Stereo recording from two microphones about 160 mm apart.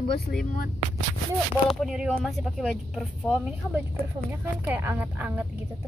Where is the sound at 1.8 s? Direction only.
5° right (ahead or behind).